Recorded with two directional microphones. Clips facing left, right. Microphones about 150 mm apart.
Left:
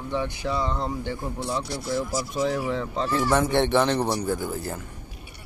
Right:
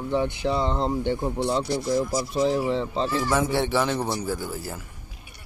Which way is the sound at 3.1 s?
Centre (ahead or behind).